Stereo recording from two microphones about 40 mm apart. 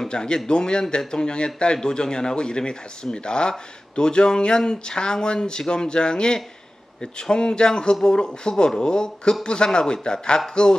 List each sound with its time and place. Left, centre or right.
0.1 s a man's voice: centre